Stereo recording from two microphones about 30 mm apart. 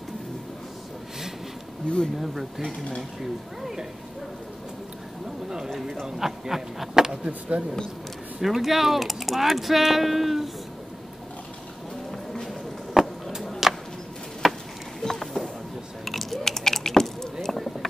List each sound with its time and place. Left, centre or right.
2.1 s speech: centre
6.0 s speech: centre
7.2 s speech: right
8.4 s speech: centre
13.0 s a sound: centre
14.4 s chop: centre
15.0 s a sound: centre
16.1 s typing: centre
16.4 s typing: centre